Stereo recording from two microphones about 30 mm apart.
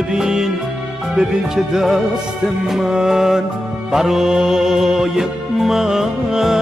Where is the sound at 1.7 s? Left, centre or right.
Centre.